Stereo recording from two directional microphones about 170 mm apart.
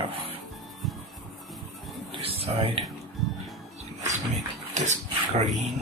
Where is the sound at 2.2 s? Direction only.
35° right (ahead or behind).